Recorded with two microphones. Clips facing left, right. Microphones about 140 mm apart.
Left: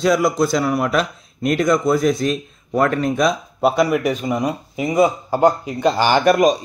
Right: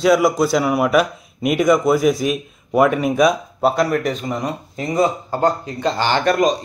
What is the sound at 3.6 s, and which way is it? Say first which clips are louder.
Speech: left 2 dB; 5° left (ahead or behind).